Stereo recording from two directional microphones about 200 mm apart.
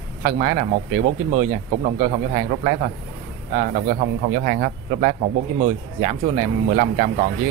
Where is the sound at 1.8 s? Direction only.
35° right (ahead or behind).